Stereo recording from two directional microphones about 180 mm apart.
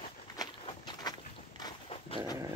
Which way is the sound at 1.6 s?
30° left (ahead or behind).